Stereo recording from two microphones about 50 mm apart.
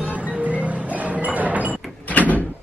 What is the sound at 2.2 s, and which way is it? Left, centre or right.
Door, left.